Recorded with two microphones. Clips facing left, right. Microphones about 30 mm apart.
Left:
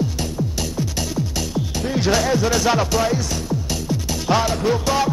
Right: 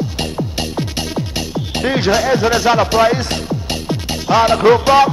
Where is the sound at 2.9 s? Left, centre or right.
Right.